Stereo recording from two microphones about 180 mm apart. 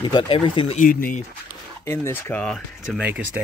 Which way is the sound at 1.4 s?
15° left (ahead or behind).